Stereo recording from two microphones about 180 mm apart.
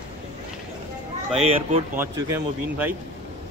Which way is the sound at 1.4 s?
35° right (ahead or behind).